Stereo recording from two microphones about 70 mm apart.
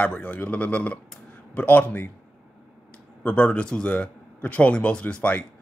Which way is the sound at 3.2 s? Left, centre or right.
Left.